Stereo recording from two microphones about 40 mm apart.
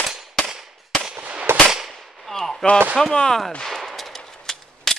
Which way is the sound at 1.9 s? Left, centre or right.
Centre.